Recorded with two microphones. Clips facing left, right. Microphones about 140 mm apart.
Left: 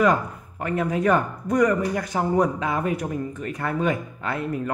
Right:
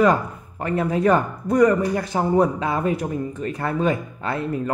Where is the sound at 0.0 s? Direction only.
30° right (ahead or behind).